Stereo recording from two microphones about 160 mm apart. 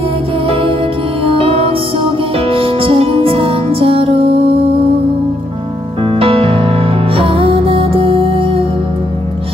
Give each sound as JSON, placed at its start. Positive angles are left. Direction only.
{"t": 0.5, "sound": "music", "side_deg": -35}
{"t": 6.1, "sound": "music", "side_deg": -35}